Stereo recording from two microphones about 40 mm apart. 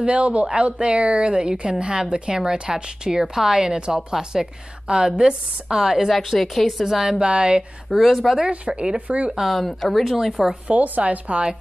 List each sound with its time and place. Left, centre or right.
0.0 s a woman's voice: right
5.8 s a woman's voice: centre
7.2 s a woman's voice: right
7.9 s a woman's voice: centre
8.5 s speech: right
9.6 s a woman's voice: centre
10.0 s a woman's voice: centre
10.7 s speech: right